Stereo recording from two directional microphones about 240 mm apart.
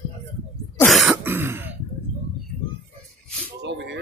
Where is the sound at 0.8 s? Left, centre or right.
Centre.